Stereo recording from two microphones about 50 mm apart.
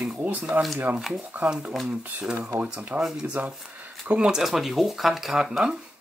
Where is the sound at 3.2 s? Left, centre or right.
Right.